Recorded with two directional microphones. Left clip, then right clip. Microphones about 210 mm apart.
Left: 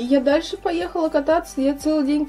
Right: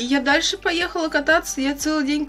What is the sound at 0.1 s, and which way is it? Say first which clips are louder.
Speech: left 2 dB; 10° left (ahead or behind).